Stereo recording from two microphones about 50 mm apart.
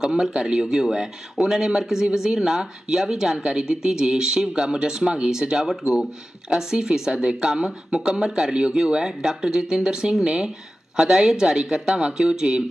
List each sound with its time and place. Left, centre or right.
0.0 s speech: centre